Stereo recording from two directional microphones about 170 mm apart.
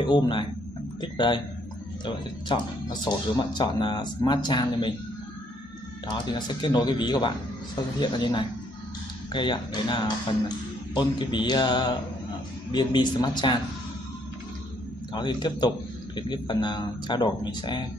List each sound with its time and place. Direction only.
0.0 s a man's voice: 25° left (ahead or behind)
6.2 s speech: 25° left (ahead or behind)
15.1 s speech: 25° left (ahead or behind)